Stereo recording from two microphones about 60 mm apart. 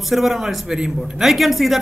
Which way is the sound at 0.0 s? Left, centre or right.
Centre.